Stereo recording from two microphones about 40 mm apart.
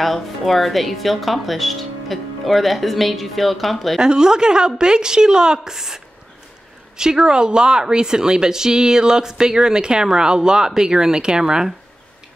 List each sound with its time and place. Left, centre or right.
0.0 s speech: centre
4.0 s speech: centre